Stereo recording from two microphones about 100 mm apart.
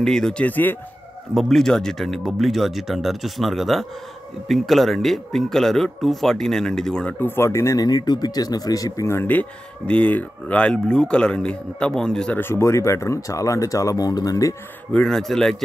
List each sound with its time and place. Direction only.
0.0 s speech: 5° left (ahead or behind)
1.3 s speech: centre (ahead or behind)
7.2 s speech: 20° left (ahead or behind); by 12.4 s 5° left (ahead or behind)
12.4 s speech: 25° left (ahead or behind)
14.9 s speech: 5° left (ahead or behind)